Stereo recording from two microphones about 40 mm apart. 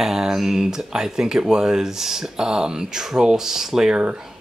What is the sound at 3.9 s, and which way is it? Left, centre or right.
Speech, right.